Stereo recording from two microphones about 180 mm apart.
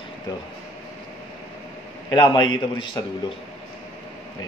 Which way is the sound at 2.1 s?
25° left (ahead or behind).